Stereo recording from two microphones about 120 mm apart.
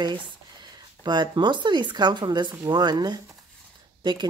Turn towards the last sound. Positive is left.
turn(degrees=-40)  # may be behind; listen again after turning